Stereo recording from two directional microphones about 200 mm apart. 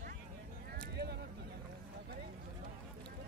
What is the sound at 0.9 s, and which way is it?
Speech, 55° right (ahead or behind).